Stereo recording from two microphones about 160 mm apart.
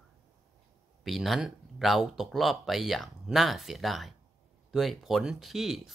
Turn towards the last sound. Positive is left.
turn(degrees=0)  # may be behind; listen again after turning